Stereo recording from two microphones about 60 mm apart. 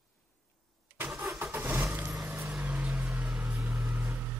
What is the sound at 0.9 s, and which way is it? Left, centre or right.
Vehicle, right.